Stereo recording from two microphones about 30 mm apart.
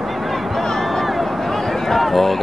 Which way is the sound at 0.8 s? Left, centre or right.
Centre.